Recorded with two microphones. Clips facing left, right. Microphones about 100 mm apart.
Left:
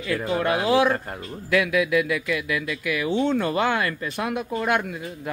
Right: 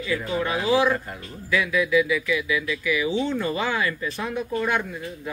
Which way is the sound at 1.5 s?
60° left (ahead or behind).